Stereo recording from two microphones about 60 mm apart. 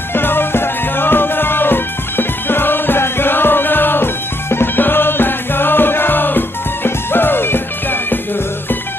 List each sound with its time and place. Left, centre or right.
0.1 s music: left